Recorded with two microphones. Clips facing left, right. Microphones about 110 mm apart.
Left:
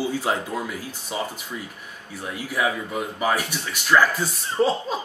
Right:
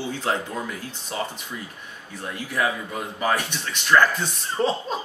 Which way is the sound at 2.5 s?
5° left (ahead or behind).